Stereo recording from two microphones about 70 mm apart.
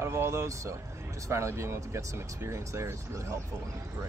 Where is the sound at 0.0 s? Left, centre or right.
Right.